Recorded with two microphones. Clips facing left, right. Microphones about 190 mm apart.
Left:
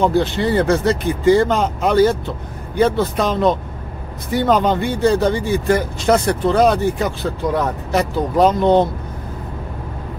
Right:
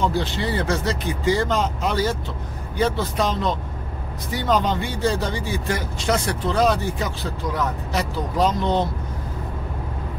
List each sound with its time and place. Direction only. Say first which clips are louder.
0.0 s speech: left 7 dB; 55° left (ahead or behind)